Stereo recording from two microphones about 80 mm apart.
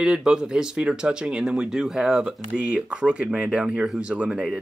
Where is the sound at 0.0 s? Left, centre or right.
Centre.